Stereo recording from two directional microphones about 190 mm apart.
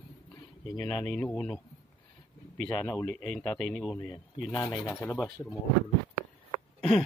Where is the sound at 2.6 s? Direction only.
20° left (ahead or behind).